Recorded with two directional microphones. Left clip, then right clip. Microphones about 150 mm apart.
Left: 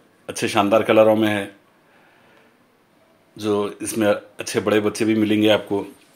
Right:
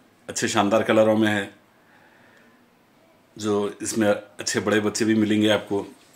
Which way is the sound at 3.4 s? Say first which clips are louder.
Left 3 dB; 10° left (ahead or behind).